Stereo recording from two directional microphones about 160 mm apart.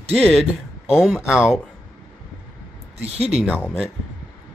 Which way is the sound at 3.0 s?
40° right (ahead or behind).